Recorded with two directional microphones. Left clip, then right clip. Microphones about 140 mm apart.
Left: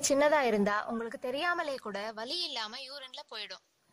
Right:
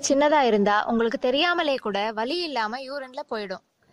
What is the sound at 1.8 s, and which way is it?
Speech, 35° right (ahead or behind).